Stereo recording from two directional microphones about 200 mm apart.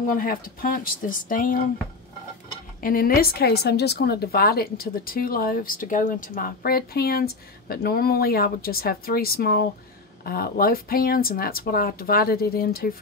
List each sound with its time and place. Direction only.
0.1 s speech: 45° left (ahead or behind)
2.8 s speech: 45° left (ahead or behind)